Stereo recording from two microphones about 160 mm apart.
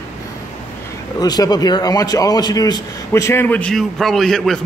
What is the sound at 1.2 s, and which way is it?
A man's voice, 25° left (ahead or behind).